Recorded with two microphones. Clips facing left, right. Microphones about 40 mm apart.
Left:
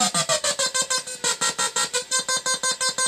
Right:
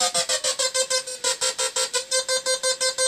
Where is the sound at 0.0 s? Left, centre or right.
Left.